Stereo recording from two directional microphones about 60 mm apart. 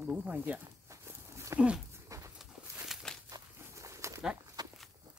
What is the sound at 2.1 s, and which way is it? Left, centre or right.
Dog, right.